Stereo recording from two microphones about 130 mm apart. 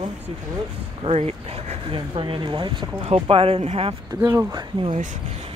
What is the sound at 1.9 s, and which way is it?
Speech, 40° right (ahead or behind).